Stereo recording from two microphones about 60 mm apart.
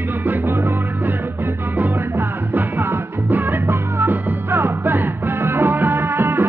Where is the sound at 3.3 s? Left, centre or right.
Right.